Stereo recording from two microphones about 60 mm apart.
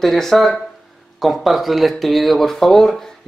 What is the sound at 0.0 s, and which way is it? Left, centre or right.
Speech, centre.